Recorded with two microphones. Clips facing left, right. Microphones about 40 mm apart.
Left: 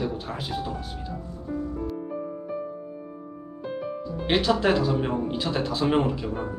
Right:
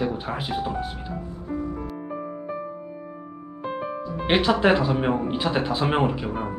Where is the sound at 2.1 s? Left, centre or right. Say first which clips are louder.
Right 1 dB; right.